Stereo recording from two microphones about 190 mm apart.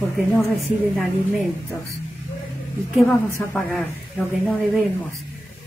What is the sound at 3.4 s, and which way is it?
Speech, 15° left (ahead or behind).